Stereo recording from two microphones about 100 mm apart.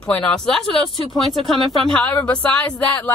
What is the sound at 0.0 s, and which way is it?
Speech, 10° left (ahead or behind).